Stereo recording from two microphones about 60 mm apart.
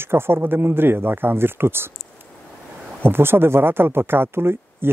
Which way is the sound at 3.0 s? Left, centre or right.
Right.